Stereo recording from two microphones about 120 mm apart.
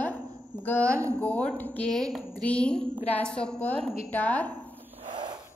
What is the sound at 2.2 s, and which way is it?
A woman's voice, 15° left (ahead or behind).